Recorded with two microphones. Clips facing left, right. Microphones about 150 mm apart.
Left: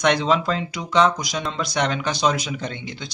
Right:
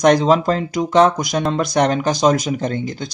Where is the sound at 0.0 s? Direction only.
40° right (ahead or behind).